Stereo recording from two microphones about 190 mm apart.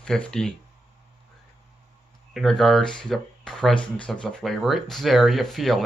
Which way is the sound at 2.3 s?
Centre (ahead or behind).